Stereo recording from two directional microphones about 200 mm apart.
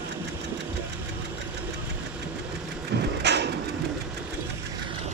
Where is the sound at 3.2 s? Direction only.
55° right (ahead or behind).